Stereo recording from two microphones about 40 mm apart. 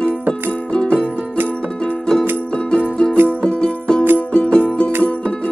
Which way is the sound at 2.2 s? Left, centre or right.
Left.